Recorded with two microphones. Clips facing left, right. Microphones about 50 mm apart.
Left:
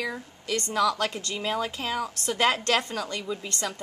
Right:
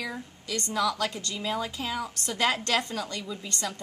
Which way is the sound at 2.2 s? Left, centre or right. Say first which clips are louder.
Left 3 dB; left.